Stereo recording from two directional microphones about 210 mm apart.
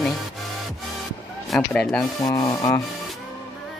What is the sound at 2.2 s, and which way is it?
Speech, 15° left (ahead or behind).